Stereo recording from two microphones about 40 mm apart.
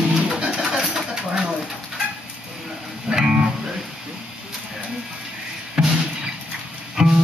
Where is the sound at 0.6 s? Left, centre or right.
Centre.